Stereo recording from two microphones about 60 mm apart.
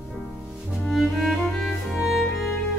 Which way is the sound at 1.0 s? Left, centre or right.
Centre.